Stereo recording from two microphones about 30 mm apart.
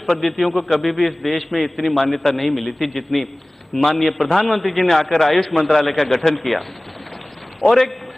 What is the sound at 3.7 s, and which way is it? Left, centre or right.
Speech, left.